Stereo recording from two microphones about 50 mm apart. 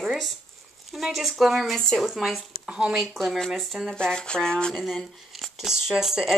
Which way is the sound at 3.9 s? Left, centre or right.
Centre.